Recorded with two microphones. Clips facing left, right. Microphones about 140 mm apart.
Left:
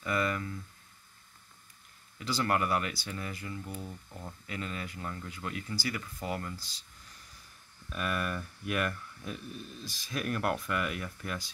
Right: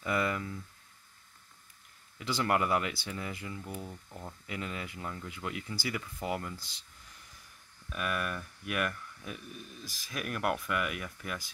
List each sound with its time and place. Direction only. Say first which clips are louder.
0.0 s speech: even; 20° right (ahead or behind)
2.1 s speech: even; 20° right (ahead or behind)
7.9 s speech: left 1 dB; 5° right (ahead or behind)